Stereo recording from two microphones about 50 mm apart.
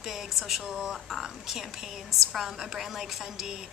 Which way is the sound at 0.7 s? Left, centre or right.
Centre.